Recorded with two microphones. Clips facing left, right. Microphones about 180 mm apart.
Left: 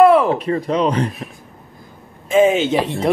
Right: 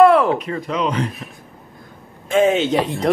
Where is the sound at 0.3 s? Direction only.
35° left (ahead or behind).